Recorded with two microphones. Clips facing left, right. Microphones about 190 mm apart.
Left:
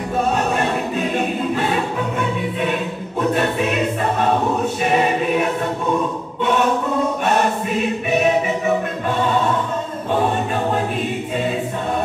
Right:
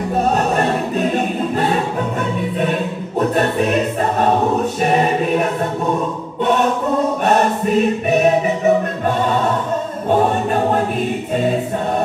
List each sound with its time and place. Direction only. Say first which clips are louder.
0.6 s choir: right 3 dB; 40° right (ahead or behind)
3.2 s music: right 2 dB; 40° right (ahead or behind)
4.8 s choir: right 1 dB; 40° right (ahead or behind)
7.2 s music: right 3 dB; 40° right (ahead or behind)